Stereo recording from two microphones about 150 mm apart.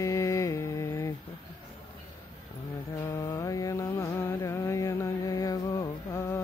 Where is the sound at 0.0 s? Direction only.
20° left (ahead or behind).